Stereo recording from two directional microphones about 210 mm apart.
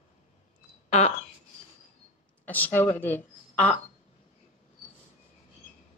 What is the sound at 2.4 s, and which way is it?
Speech, 10° left (ahead or behind).